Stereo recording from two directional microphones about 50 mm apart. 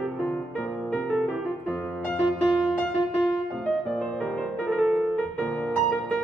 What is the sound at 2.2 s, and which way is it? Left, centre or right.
Music, centre.